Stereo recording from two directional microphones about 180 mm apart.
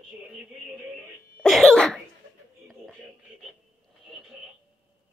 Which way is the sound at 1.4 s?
Centre (ahead or behind).